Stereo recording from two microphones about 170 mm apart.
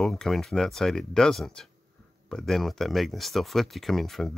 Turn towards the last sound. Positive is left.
turn(degrees=0)  # may be behind; listen again after turning